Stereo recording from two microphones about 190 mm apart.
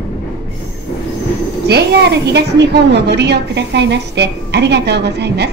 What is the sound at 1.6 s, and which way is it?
A woman's voice, 60° right (ahead or behind).